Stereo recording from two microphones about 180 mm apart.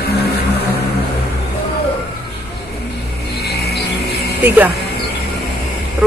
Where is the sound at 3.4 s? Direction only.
65° left (ahead or behind).